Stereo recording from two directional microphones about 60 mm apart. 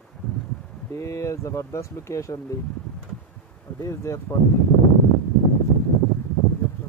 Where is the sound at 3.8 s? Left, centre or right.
Left.